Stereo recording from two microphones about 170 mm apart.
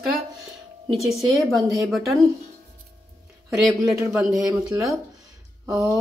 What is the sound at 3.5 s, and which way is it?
Speech, centre (ahead or behind).